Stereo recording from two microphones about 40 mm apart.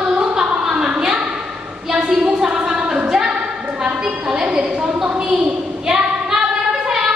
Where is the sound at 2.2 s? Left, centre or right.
Right.